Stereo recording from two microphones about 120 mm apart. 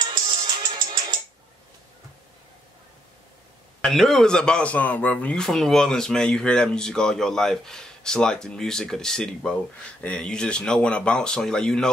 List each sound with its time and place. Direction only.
0.0 s music: 40° right (ahead or behind)
3.8 s a man's voice: centre (ahead or behind)